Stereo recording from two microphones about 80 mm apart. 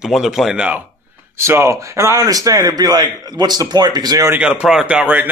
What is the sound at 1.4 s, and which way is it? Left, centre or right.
A man's voice, right.